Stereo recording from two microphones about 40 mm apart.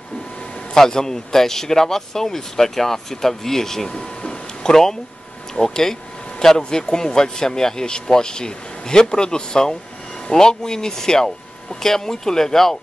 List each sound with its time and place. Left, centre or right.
0.7 s speech: centre